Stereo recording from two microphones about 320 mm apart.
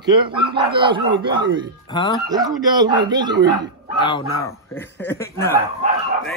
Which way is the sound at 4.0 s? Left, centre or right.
Centre.